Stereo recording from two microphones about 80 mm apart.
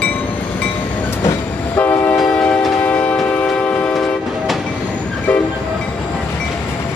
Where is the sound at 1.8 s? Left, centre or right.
Left.